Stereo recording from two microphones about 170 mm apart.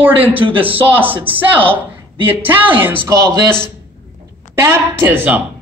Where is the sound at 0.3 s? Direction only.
30° right (ahead or behind).